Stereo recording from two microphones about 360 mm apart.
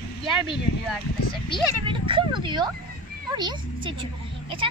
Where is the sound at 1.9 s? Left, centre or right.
Centre.